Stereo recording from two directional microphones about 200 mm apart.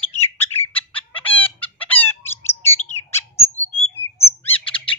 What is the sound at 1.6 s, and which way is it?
Chicken, 10° left (ahead or behind).